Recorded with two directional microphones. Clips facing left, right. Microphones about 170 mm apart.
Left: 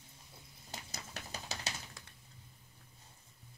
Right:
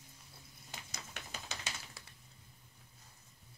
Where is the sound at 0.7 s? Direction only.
40° left (ahead or behind).